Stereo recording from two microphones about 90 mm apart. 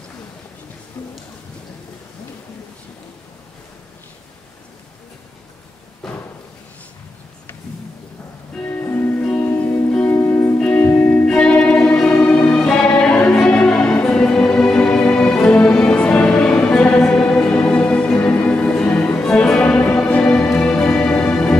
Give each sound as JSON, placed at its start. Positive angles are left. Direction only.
{"t": 6.0, "sound": "thump", "side_deg": 5}
{"t": 8.6, "sound": "music", "side_deg": 25}